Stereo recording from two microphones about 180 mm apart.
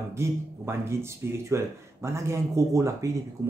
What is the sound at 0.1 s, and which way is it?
Speech, 15° right (ahead or behind).